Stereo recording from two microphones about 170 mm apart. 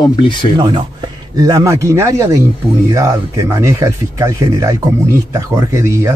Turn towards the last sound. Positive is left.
turn(degrees=-15)  # may be behind; listen again after turning